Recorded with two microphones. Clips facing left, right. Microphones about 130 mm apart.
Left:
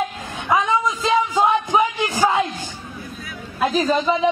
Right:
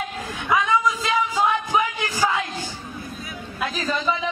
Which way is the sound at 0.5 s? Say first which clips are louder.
Left 2 dB; 25° left (ahead or behind).